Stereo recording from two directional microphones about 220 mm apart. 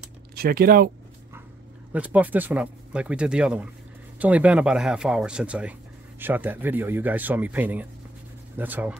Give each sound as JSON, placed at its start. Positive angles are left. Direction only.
{"t": 0.4, "sound": "speech", "side_deg": -40}
{"t": 1.9, "sound": "speech", "side_deg": -5}